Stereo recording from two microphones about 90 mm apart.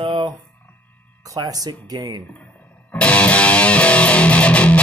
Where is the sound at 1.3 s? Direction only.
45° right (ahead or behind).